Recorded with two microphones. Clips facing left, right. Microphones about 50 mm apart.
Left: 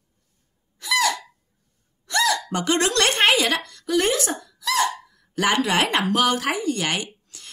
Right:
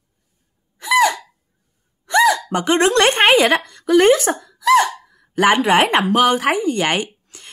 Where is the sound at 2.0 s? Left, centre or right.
Right.